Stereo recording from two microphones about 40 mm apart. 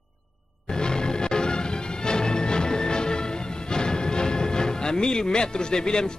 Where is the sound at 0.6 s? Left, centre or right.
Centre.